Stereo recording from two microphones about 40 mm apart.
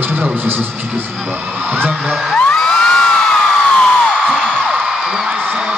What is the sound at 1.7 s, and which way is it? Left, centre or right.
Speech, right.